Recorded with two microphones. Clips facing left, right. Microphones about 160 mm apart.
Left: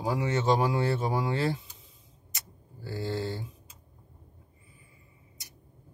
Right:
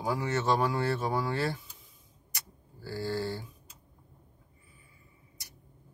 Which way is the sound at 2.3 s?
20° left (ahead or behind).